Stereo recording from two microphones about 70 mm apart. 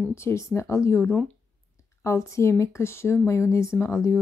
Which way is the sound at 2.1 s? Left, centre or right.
Left.